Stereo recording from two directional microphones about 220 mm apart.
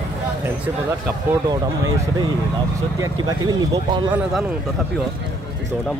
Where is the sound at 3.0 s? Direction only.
15° right (ahead or behind).